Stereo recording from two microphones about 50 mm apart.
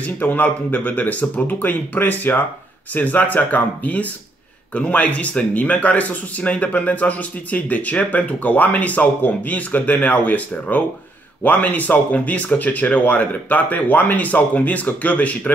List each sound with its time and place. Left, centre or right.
0.0 s speech: left